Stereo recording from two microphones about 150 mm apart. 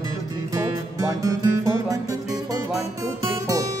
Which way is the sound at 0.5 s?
25° right (ahead or behind).